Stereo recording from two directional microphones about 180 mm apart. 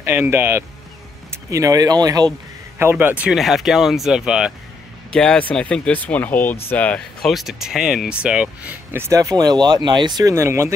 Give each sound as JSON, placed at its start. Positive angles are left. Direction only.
{"t": 0.0, "sound": "speech", "side_deg": -10}